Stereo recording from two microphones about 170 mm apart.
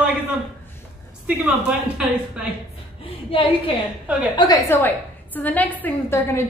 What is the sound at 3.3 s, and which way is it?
Speech, 30° left (ahead or behind).